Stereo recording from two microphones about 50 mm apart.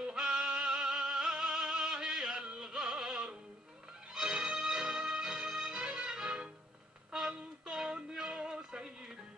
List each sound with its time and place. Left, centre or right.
0.0 s music: centre